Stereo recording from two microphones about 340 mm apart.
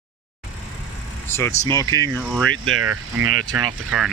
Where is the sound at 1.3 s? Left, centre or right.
Centre.